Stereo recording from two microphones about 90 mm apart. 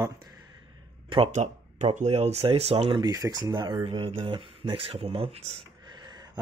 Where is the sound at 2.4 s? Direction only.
90° right.